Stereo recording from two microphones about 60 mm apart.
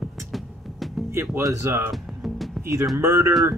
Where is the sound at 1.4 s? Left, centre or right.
Right.